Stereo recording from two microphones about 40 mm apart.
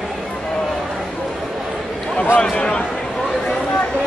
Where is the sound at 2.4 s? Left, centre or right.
Left.